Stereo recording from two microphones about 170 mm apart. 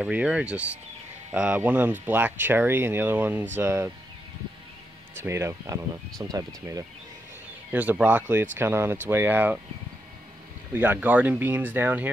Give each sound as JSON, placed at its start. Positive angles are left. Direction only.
{"t": 0.0, "sound": "speech", "side_deg": -5}
{"t": 5.1, "sound": "speech", "side_deg": -15}
{"t": 7.7, "sound": "speech", "side_deg": -10}
{"t": 10.7, "sound": "speech", "side_deg": -10}